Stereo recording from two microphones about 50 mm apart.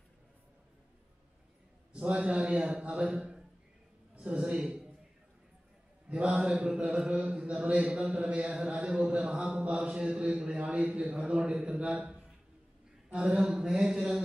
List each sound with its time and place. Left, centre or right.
1.9 s a man's voice: right
4.1 s a sound: right
4.4 s a man's voice: centre
6.0 s a man's voice: right
6.3 s a man's voice: centre
13.1 s mantra: right